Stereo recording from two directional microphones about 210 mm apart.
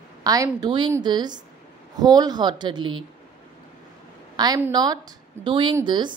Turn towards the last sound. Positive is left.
turn(degrees=-20)  # may be behind; listen again after turning